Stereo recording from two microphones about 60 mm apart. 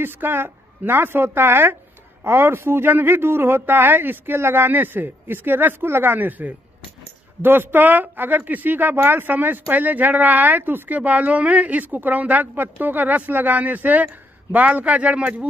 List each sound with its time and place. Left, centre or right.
0.0 s speech: right
11.0 s speech: right